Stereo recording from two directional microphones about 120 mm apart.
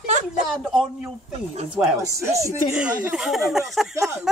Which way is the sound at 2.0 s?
25° right (ahead or behind).